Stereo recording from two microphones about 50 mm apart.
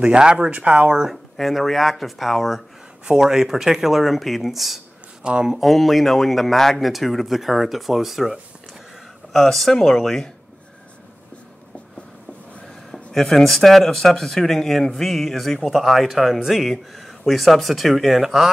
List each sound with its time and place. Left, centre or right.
0.0 s speech: centre
1.1 s speech: centre
5.2 s speech: centre
5.6 s speech: centre
12.6 s speech: centre